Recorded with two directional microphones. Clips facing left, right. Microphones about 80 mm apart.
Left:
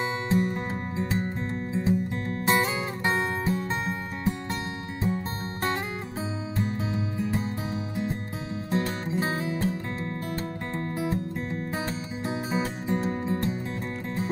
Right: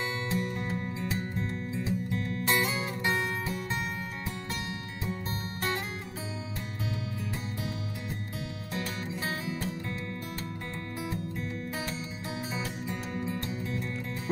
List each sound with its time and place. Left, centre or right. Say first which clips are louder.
0.0 s music: left 6 dB; left